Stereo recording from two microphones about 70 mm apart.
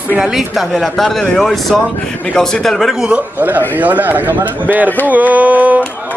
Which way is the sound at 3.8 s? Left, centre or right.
Right.